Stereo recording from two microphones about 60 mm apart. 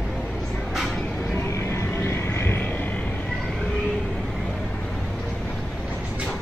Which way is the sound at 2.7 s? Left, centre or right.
Left.